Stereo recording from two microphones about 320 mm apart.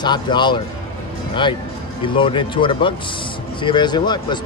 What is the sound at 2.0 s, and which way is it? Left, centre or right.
Speech, centre.